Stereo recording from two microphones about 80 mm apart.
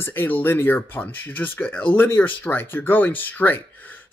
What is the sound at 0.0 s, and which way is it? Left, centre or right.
Speech, left.